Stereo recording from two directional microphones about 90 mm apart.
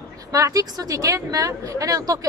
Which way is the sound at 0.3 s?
40° right (ahead or behind).